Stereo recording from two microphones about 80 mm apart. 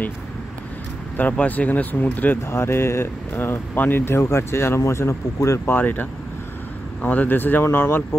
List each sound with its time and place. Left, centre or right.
1.1 s speech: centre
2.5 s speech: left
5.8 s speech: left